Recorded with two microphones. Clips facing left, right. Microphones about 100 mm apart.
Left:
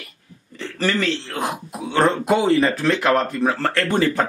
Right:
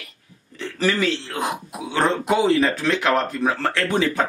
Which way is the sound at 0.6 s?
5° right (ahead or behind).